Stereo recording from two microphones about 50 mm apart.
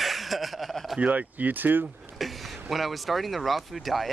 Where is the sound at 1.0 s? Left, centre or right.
Right.